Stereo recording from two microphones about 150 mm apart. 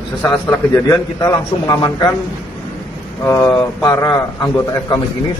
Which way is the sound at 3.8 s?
25° left (ahead or behind).